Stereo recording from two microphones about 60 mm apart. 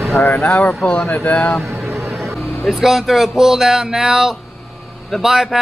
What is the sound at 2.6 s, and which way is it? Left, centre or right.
Speech, centre.